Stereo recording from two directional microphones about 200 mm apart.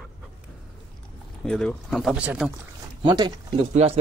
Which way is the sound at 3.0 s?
20° right (ahead or behind).